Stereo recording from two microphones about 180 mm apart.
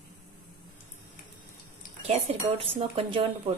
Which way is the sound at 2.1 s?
30° right (ahead or behind).